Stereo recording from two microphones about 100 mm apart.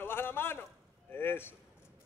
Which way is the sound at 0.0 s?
20° left (ahead or behind).